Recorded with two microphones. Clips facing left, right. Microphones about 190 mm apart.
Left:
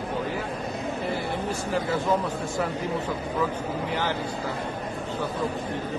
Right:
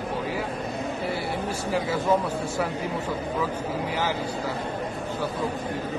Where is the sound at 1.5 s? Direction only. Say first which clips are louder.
Even; 10° right (ahead or behind).